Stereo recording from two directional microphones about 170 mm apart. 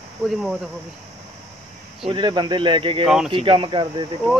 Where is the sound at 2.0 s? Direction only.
30° right (ahead or behind).